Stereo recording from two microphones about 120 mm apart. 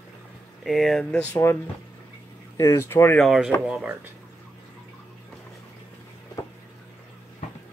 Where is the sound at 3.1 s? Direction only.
Centre (ahead or behind).